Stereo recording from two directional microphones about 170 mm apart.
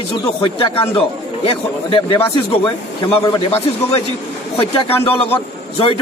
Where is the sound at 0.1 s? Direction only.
30° left (ahead or behind).